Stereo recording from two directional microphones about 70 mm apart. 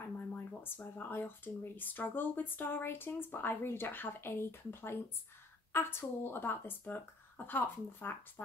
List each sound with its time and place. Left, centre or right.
0.5 s speech: left